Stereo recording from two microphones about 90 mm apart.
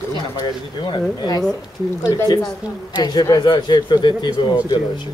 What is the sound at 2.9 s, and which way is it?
Speech, 50° left (ahead or behind).